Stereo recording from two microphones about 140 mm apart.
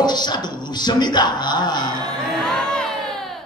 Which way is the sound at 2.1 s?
5° left (ahead or behind).